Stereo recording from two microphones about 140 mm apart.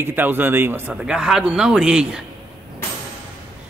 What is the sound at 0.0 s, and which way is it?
A man's voice, 15° right (ahead or behind).